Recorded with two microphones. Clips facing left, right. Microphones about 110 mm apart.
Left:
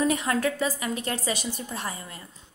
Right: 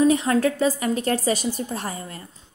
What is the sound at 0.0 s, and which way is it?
A woman's voice, 30° right (ahead or behind).